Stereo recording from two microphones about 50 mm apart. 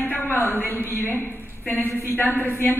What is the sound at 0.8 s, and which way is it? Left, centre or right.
Speech, right.